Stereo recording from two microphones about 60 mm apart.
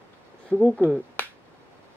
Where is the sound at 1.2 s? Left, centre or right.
Left.